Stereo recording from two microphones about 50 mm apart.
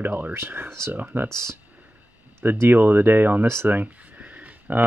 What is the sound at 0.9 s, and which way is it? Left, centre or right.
Speech, right.